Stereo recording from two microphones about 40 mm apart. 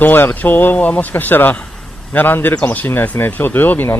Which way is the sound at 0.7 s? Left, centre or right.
Left.